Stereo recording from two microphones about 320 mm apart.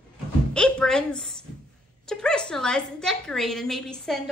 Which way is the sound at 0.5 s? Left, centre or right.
Centre.